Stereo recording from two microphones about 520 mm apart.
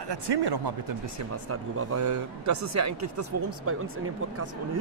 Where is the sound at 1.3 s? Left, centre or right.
Right.